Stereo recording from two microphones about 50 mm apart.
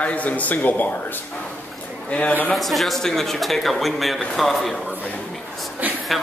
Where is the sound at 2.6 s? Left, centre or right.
Centre.